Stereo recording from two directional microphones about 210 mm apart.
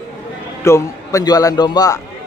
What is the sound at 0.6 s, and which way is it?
A man's voice, 15° left (ahead or behind).